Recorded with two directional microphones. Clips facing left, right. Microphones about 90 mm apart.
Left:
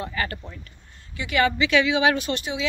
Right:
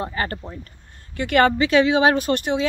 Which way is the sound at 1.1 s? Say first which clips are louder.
Right 5 dB; 55° right (ahead or behind).